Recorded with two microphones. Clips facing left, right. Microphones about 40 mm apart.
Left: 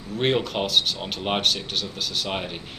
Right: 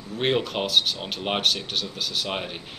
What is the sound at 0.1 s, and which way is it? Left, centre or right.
Speech, centre.